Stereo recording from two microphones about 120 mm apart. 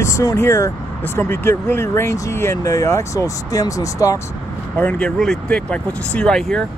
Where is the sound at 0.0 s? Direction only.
25° left (ahead or behind).